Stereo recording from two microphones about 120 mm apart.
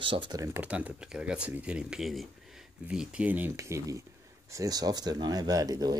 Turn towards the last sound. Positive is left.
turn(degrees=-30)  # may be behind; listen again after turning